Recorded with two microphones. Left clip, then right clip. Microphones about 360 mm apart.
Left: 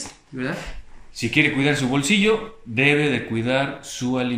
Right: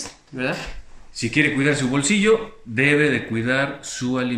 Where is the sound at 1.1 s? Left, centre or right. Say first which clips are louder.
Even; centre.